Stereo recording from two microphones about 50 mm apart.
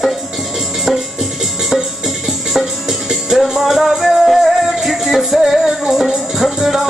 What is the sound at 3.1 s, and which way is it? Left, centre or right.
Music, centre.